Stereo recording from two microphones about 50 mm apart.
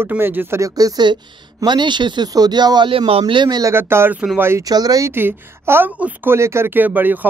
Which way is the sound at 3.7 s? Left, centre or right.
Right.